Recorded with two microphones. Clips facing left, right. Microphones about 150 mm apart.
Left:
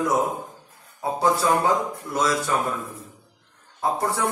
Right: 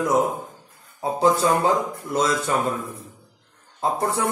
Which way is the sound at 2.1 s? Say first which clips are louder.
Right 2 dB; 25° right (ahead or behind).